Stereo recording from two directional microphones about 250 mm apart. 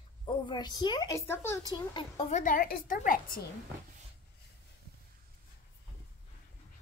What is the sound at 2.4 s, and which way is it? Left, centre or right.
A woman's voice, left.